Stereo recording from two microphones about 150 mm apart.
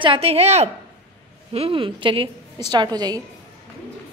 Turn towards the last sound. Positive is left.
turn(degrees=-25)  # may be behind; listen again after turning